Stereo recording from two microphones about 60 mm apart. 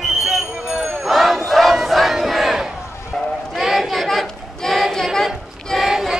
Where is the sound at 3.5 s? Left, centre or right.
Centre.